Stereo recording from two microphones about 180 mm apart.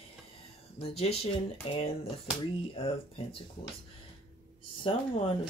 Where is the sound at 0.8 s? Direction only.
35° left (ahead or behind).